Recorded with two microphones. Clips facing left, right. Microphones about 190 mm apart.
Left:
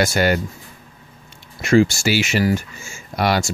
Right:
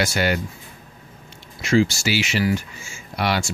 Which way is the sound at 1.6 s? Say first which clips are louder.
Left 4 dB; 55° left (ahead or behind).